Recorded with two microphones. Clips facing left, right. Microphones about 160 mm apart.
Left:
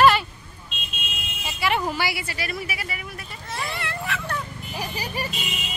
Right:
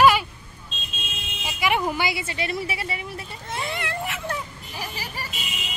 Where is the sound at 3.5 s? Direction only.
20° right (ahead or behind).